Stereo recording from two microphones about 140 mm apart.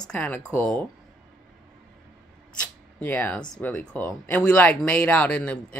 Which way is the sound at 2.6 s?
10° left (ahead or behind).